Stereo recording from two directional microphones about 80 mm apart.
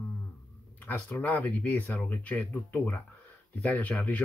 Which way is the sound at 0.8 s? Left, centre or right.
Left.